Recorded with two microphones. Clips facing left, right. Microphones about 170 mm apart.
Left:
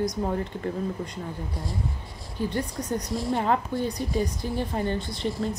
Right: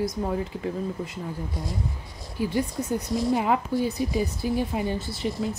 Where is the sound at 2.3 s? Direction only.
10° right (ahead or behind).